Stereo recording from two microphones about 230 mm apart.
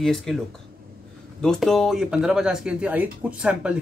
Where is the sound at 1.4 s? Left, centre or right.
Centre.